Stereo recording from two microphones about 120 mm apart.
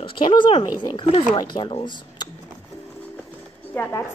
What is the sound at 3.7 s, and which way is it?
Speech, 20° left (ahead or behind).